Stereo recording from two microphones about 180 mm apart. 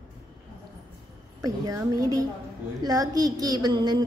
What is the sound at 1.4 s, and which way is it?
A woman's voice, 20° right (ahead or behind).